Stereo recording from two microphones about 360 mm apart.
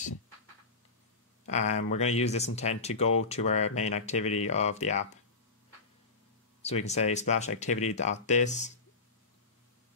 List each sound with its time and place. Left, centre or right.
1.4 s speech: centre
6.6 s speech: centre